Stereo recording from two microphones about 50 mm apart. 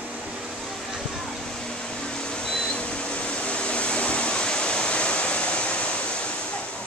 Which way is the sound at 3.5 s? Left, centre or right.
Left.